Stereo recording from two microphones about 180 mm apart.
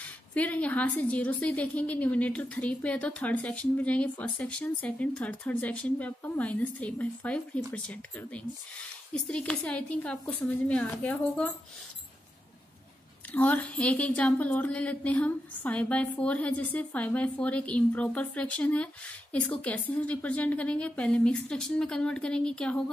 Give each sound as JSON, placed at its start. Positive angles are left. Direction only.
{"t": 0.0, "sound": "speech", "side_deg": 10}
{"t": 13.3, "sound": "speech", "side_deg": 10}